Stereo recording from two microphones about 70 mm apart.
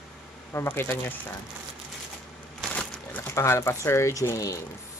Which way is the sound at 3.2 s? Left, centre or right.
Left.